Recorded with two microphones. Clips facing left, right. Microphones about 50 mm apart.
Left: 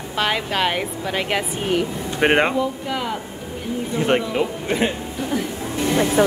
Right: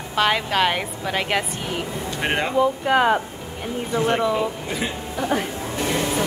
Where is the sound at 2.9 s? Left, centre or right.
Right.